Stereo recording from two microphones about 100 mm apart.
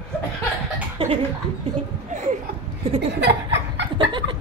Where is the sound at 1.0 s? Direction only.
60° right (ahead or behind).